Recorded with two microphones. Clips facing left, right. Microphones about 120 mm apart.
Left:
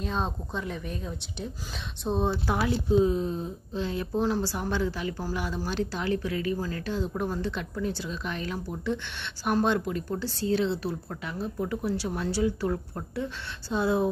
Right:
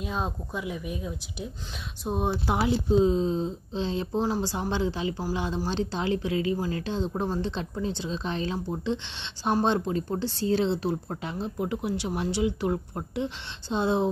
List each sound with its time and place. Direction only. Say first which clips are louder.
0.0 s a woman's voice: left 1 dB; 10° right (ahead or behind); by 11.5 s 25° right (ahead or behind)
11.5 s a woman's voice: even; 15° right (ahead or behind)